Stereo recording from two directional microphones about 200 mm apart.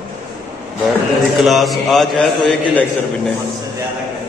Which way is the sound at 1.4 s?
Centre (ahead or behind).